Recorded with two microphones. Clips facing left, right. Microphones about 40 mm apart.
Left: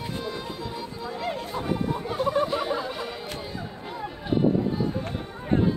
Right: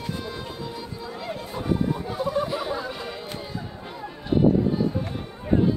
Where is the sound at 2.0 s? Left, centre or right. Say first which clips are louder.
Left 1 dB; left.